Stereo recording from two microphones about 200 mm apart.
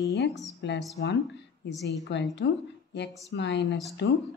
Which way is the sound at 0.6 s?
60° left (ahead or behind).